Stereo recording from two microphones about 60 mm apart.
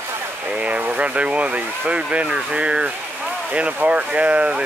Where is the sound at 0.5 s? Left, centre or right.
Right.